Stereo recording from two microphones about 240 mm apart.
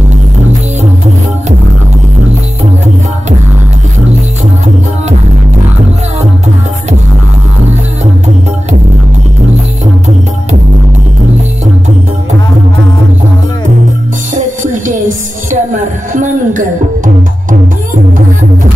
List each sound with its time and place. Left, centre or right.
14.3 s music: right